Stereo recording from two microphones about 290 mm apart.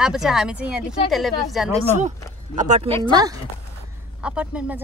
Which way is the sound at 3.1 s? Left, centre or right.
Centre.